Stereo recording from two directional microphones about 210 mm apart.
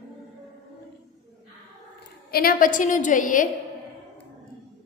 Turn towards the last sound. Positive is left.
turn(degrees=40)  # may be behind; listen again after turning